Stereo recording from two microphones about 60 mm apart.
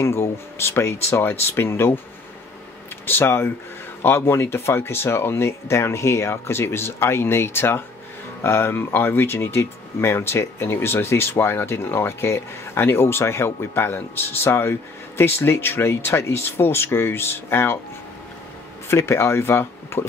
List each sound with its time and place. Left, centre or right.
0.0 s speech: left
3.1 s speech: left
18.9 s speech: left